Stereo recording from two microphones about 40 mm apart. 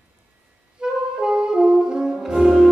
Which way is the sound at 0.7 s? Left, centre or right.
Centre.